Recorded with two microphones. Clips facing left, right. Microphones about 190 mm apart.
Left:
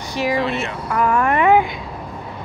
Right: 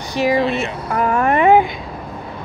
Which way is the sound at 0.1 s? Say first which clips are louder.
Right 4 dB; 20° right (ahead or behind).